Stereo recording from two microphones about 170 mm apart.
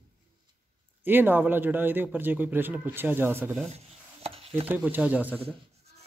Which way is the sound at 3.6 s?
40° right (ahead or behind).